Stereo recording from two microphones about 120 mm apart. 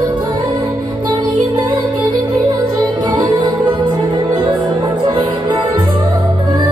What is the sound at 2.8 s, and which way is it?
Music, 35° right (ahead or behind).